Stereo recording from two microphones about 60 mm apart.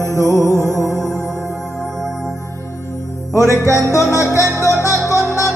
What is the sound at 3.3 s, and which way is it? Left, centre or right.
Music, right.